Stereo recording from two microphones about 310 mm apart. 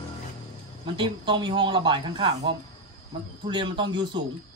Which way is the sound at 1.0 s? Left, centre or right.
Centre.